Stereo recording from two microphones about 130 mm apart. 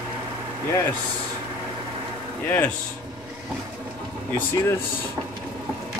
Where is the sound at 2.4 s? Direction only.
15° left (ahead or behind).